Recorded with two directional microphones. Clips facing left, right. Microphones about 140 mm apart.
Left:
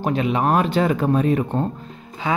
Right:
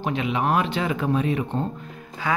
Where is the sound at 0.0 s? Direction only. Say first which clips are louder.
Left 4 dB; 40° left (ahead or behind).